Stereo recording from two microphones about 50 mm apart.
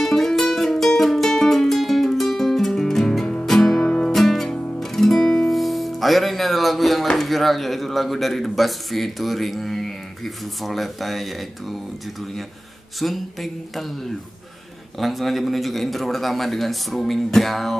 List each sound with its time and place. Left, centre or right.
0.0 s music: centre
3.8 s music: left
4.1 s music: centre
7.1 s speech: centre
13.0 s speech: centre